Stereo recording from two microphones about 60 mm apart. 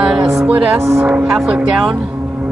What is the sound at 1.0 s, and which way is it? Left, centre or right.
Speech, right.